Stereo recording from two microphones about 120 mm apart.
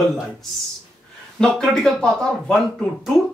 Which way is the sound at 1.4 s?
5° left (ahead or behind).